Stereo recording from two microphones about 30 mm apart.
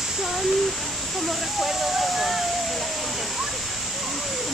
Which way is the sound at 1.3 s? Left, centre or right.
Centre.